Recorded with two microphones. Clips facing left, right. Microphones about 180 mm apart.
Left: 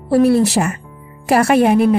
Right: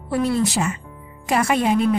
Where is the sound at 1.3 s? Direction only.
70° left (ahead or behind).